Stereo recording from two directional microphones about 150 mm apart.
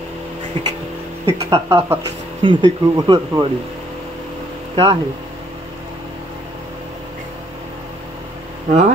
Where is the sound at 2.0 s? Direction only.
30° right (ahead or behind).